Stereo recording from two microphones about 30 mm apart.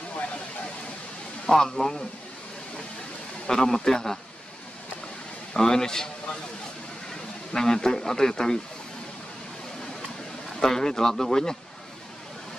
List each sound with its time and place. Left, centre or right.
1.4 s speech: left
3.4 s speech: centre
5.5 s speech: left
7.1 s speech: left
10.6 s speech: centre